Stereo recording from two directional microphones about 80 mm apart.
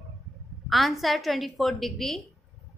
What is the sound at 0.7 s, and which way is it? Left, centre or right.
A woman's voice, centre.